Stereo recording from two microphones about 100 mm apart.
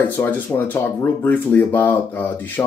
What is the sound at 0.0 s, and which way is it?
Speech, 15° left (ahead or behind).